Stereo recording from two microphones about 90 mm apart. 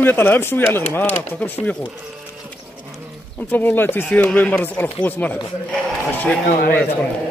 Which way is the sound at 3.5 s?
20° left (ahead or behind).